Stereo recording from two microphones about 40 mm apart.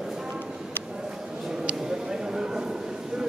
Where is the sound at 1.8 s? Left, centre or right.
Centre.